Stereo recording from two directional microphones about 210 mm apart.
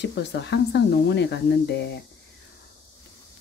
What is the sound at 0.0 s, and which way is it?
Speech, 55° left (ahead or behind).